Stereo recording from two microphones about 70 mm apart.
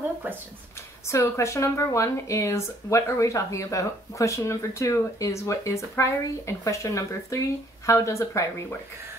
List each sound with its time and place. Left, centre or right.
1.0 s speech: left